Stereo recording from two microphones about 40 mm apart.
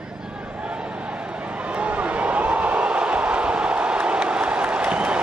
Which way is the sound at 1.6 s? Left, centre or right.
Right.